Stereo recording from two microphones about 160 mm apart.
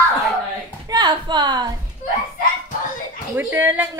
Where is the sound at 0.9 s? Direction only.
25° right (ahead or behind).